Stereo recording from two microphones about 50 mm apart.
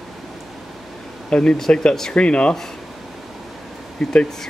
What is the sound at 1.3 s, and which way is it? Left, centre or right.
Speech, centre.